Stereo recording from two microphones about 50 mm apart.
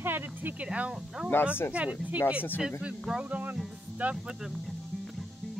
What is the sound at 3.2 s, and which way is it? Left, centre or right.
Speech, right.